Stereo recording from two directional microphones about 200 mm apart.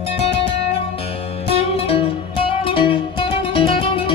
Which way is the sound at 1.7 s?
30° left (ahead or behind).